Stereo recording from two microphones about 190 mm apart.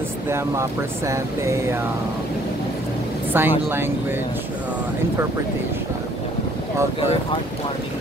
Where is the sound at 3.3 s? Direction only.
10° right (ahead or behind).